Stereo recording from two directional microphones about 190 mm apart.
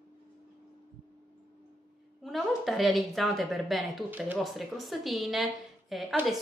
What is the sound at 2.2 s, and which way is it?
A woman's voice, centre (ahead or behind).